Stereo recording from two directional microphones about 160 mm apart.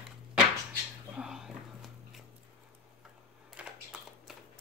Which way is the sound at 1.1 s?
5° right (ahead or behind).